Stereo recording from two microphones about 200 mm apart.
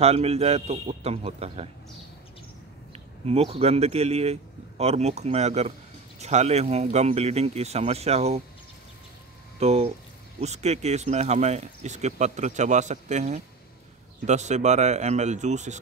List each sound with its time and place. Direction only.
0.0 s speech: 30° right (ahead or behind)
2.9 s a man's voice: 30° right (ahead or behind)
9.6 s speech: 30° right (ahead or behind)